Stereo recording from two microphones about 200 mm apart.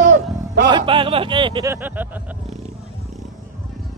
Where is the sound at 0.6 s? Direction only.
25° right (ahead or behind).